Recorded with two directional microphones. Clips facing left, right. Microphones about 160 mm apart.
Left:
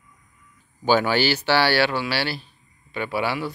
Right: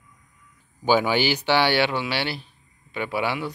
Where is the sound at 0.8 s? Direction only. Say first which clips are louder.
Left 1 dB; 10° right (ahead or behind).